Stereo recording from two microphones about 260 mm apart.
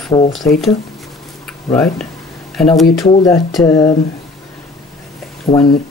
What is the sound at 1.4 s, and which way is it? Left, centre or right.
Speech, centre.